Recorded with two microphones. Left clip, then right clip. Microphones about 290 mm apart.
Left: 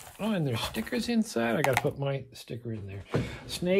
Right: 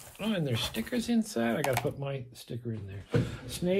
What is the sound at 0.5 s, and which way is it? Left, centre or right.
Speech, left.